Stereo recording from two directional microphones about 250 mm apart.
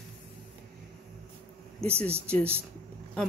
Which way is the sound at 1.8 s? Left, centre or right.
Right.